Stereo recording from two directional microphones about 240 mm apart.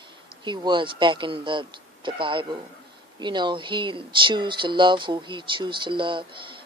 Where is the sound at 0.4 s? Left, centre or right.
Centre.